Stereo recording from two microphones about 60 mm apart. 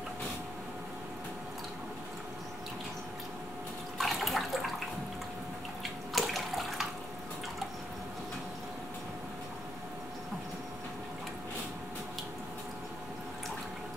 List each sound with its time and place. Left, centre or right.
4.0 s water: centre
6.1 s bathtub: centre